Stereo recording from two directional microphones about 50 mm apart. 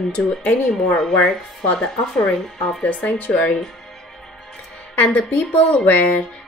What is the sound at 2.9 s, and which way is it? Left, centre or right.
Speech, left.